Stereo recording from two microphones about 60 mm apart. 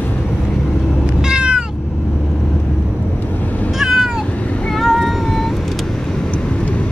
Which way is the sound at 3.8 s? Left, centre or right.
Centre.